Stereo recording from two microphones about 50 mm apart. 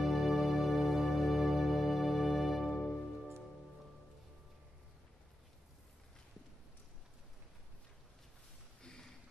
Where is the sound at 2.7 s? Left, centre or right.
Centre.